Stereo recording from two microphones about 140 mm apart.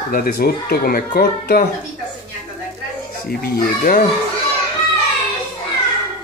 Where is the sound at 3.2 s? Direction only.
90° left.